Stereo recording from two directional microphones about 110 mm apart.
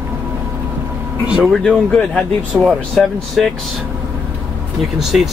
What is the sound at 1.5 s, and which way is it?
Speech, 10° left (ahead or behind).